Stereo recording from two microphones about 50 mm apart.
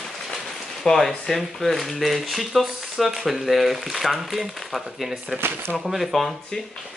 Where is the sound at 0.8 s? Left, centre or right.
Centre.